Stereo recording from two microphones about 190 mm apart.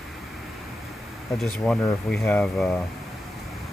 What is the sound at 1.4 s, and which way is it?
Speech, centre (ahead or behind).